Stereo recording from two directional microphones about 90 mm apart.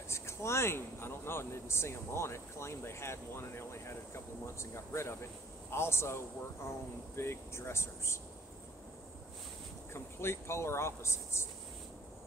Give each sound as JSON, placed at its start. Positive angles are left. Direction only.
{"t": 0.1, "sound": "speech", "side_deg": 30}
{"t": 9.9, "sound": "speech", "side_deg": 30}